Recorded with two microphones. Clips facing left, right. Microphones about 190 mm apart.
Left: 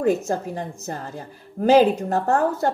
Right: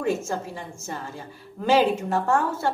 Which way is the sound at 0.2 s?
40° left (ahead or behind).